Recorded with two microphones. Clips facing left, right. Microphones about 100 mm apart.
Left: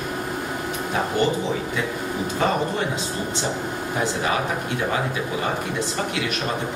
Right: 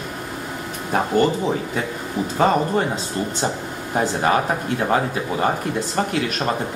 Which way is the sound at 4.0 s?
45° right (ahead or behind).